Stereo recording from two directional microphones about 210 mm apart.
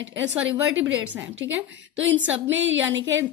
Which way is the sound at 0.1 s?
60° right (ahead or behind).